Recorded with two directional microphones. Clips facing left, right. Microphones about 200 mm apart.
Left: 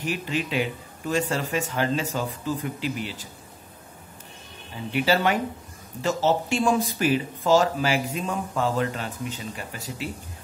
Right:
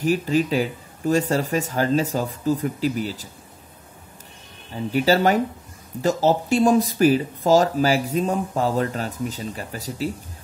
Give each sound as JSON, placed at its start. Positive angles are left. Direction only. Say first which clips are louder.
{"t": 0.0, "sound": "speech", "louder": "right 8 dB", "side_deg": -40}
{"t": 4.9, "sound": "speech", "louder": "right 4 dB", "side_deg": -40}